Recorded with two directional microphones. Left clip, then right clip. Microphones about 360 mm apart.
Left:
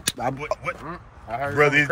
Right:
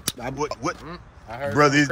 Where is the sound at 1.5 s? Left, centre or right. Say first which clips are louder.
Even; centre.